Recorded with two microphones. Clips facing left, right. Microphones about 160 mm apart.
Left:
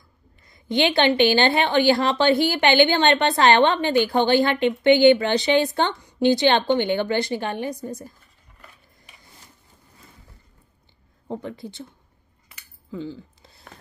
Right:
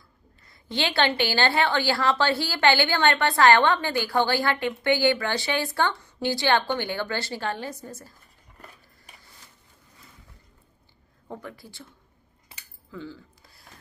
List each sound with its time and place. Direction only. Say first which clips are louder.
0.5 s a woman's voice: left 7 dB; 20° left (ahead or behind)
11.2 s a woman's voice: left 7 dB; 20° left (ahead or behind)
12.9 s a sound: left 6 dB; 20° left (ahead or behind)